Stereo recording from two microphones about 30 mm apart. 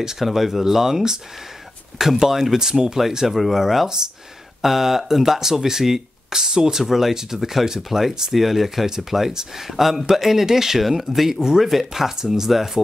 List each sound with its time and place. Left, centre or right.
0.2 s speech: centre
3.3 s speech: centre
9.3 s speech: centre
9.7 s speech: centre
11.3 s speech: right
11.6 s speech: centre